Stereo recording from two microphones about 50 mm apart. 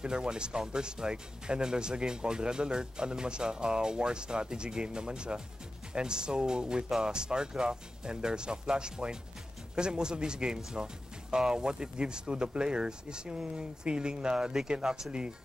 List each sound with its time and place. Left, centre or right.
0.0 s speech: centre